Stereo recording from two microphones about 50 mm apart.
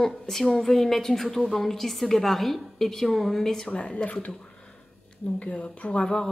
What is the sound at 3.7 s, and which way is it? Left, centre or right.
Speech, left.